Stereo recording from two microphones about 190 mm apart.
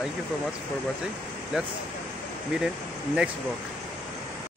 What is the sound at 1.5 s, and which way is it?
Speech, 5° right (ahead or behind).